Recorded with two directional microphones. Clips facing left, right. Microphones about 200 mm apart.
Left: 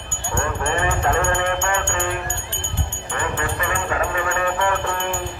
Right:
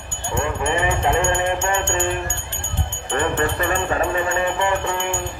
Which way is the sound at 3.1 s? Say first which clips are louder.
Right 5 dB; 40° right (ahead or behind).